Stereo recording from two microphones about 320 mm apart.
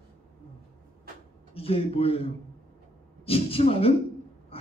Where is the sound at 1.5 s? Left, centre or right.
Centre.